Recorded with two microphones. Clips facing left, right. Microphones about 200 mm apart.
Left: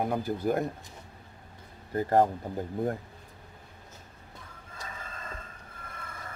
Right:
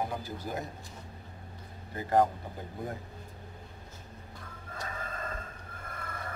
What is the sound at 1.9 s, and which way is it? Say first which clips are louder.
Speech: left 4 dB; 45° left (ahead or behind).